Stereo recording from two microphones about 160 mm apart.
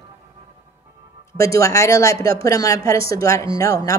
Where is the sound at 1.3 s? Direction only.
20° left (ahead or behind).